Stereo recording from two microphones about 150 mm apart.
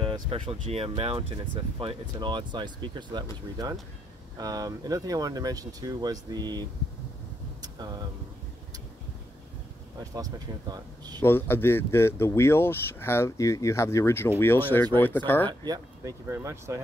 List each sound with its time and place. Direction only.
0.0 s speech: 40° right (ahead or behind)
4.4 s speech: 25° right (ahead or behind)
7.6 s vehicle: 25° right (ahead or behind)
10.1 s speech: 25° right (ahead or behind)
11.1 s speech: 15° left (ahead or behind)
15.6 s speech: 25° right (ahead or behind)